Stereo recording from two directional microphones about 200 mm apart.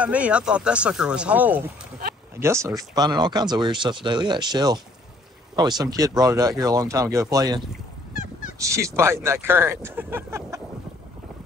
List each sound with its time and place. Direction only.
0.0 s speech: 5° right (ahead or behind)
8.1 s fowl: 45° left (ahead or behind)
8.5 s speech: 15° right (ahead or behind)